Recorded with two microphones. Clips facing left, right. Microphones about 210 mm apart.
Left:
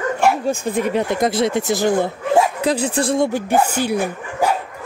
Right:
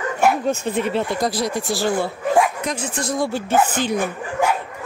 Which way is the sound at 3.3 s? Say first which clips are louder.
Left 1 dB; 15° left (ahead or behind).